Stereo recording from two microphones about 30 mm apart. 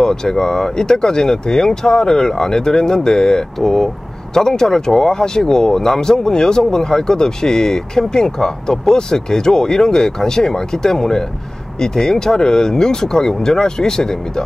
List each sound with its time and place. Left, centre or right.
0.0 s speech: centre